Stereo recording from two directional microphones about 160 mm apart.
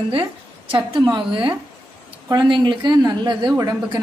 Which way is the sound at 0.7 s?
30° right (ahead or behind).